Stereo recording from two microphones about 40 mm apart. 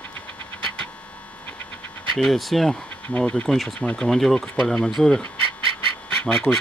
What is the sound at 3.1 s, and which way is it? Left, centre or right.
Speech, left.